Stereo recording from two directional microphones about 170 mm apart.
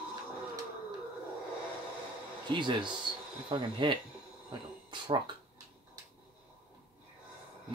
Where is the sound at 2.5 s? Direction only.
25° right (ahead or behind).